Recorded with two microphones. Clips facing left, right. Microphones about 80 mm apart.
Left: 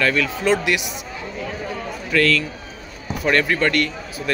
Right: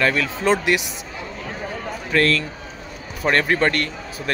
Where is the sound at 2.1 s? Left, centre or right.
Right.